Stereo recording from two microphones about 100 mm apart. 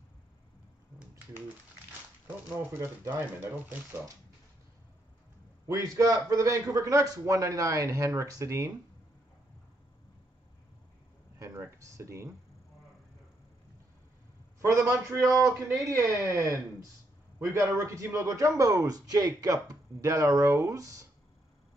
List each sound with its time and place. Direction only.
2.7 s speech: 25° right (ahead or behind)
5.7 s a man's voice: 35° right (ahead or behind)
11.3 s speech: 30° right (ahead or behind)
14.6 s a man's voice: 30° right (ahead or behind)